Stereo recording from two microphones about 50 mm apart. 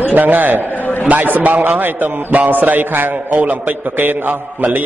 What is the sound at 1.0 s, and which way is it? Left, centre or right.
A man's voice, right.